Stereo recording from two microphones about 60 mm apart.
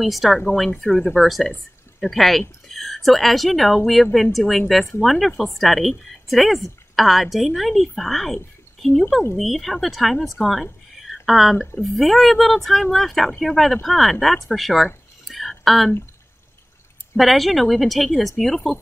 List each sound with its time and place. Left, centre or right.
0.0 s speech: centre
9.4 s speech: centre
11.5 s speech: left
11.8 s speech: centre
15.2 s a sound: centre
17.2 s speech: centre